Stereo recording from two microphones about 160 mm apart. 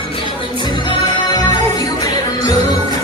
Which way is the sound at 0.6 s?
30° left (ahead or behind).